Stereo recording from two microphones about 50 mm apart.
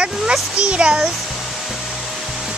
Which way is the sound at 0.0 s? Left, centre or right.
Centre.